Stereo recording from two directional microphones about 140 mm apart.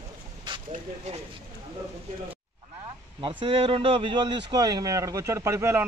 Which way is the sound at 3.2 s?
35° right (ahead or behind).